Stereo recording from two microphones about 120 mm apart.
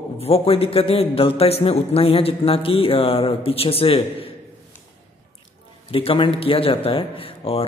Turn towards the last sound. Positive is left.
turn(degrees=55)  # may be behind; listen again after turning